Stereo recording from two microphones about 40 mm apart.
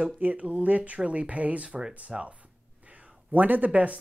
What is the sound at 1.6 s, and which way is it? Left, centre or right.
Speech, right.